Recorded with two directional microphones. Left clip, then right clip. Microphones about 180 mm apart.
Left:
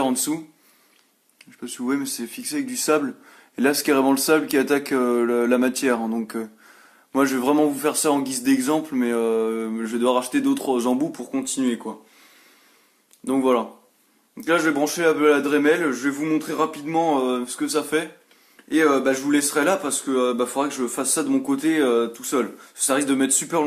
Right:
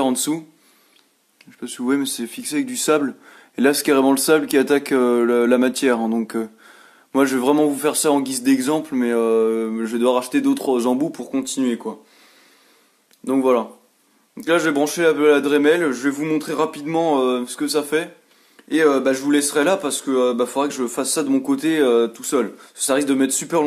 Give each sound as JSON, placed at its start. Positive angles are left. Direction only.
{"t": 0.0, "sound": "speech", "side_deg": -25}
{"t": 1.4, "sound": "speech", "side_deg": -25}
{"t": 13.2, "sound": "speech", "side_deg": -30}